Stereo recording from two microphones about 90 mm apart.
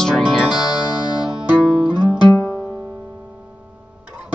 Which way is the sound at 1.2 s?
10° right (ahead or behind).